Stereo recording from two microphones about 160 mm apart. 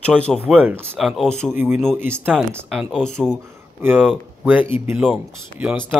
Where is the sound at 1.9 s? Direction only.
15° right (ahead or behind).